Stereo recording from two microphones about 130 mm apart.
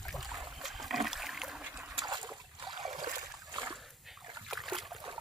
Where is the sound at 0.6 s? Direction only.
Centre (ahead or behind).